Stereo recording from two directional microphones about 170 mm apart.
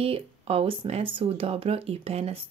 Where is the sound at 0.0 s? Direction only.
35° right (ahead or behind).